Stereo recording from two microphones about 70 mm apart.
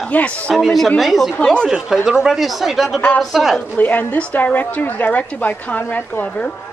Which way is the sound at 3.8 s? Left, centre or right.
Left.